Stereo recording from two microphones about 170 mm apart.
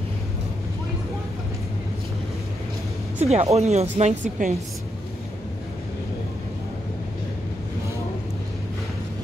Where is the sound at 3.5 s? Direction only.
40° right (ahead or behind).